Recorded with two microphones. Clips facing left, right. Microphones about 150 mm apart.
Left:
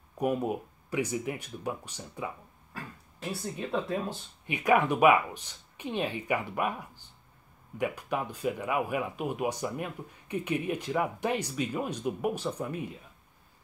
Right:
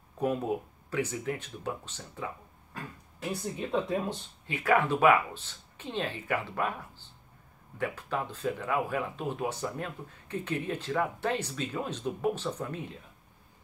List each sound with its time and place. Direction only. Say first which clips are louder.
0.2 s speech: left 1 dB; 10° left (ahead or behind)
3.3 s speech: right 1 dB; 15° right (ahead or behind)
4.5 s speech: left 1 dB; 15° left (ahead or behind)